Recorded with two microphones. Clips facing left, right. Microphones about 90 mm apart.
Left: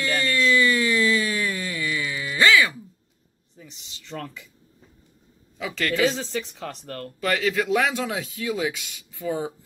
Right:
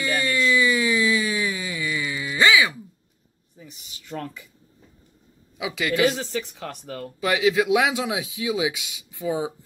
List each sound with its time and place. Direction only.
0.0 s a sound: centre (ahead or behind)
3.5 s speech: 5° right (ahead or behind)
5.6 s speech: 10° right (ahead or behind)